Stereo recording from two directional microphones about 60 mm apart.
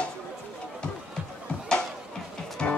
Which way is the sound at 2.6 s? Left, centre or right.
Centre.